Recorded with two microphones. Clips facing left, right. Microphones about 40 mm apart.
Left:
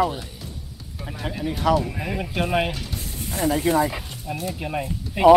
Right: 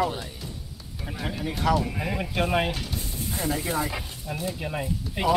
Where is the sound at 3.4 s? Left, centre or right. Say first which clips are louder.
Left 8 dB; left.